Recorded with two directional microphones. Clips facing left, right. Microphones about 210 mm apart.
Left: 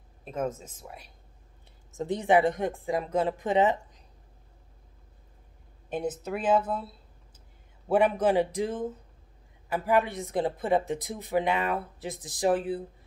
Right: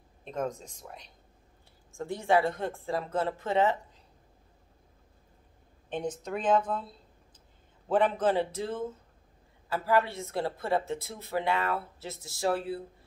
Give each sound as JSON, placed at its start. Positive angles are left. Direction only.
{"t": 0.2, "sound": "speech", "side_deg": 5}
{"t": 2.0, "sound": "speech", "side_deg": 20}
{"t": 5.9, "sound": "speech", "side_deg": 5}